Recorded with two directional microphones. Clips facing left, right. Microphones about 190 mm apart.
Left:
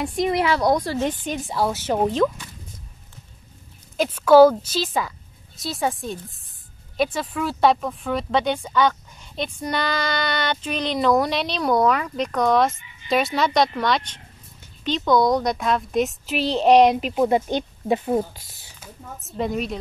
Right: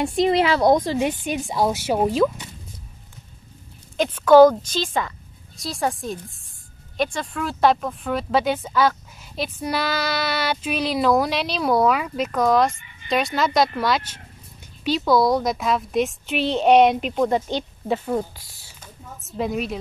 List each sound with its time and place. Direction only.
0.0 s a woman's voice: 25° right (ahead or behind); by 2.3 s 10° right (ahead or behind)
3.9 s speech: 5° left (ahead or behind)
17.8 s speech: 20° left (ahead or behind)
19.3 s speech: centre (ahead or behind)